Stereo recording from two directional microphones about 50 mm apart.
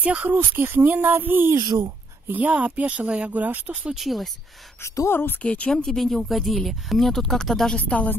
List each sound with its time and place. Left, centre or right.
0.0 s speech: right
0.4 s speech: right
2.5 s speech: right
3.9 s speech: centre
4.8 s a woman's voice: left
5.4 s speech: left
5.9 s speech: centre
7.7 s speech: left